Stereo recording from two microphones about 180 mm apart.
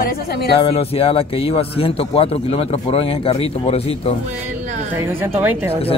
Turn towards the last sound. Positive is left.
turn(degrees=-10)  # may be behind; listen again after turning